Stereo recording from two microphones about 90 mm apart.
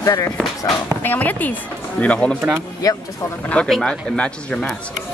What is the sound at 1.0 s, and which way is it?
Speech, 20° left (ahead or behind).